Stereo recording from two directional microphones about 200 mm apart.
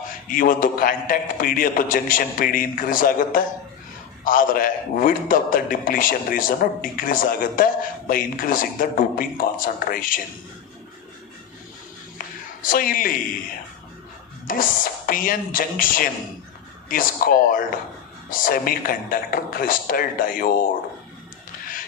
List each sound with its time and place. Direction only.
0.3 s a man's voice: 45° left (ahead or behind)
12.6 s a man's voice: 45° left (ahead or behind)
14.5 s a man's voice: 45° left (ahead or behind)